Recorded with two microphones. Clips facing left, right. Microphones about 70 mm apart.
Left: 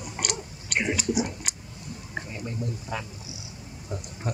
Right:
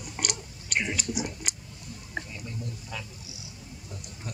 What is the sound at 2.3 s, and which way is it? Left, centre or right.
Speech, left.